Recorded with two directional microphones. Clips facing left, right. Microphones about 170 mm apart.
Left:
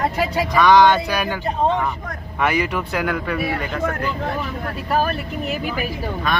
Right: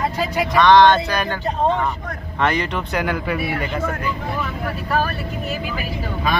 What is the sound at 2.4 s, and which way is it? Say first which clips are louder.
Speech: even; 5° left (ahead or behind).